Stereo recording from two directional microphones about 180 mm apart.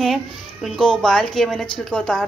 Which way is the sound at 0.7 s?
Centre (ahead or behind).